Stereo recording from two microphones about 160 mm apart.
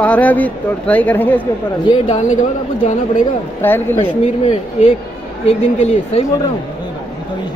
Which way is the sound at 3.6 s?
15° left (ahead or behind).